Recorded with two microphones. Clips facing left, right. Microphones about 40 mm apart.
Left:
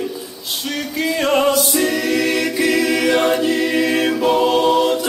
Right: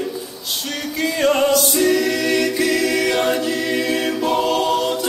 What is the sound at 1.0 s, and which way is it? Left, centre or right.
Music, centre.